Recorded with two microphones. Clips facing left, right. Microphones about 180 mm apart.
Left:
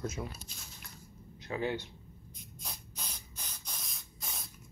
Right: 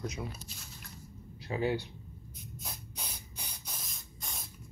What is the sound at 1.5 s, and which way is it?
Speech, 25° right (ahead or behind).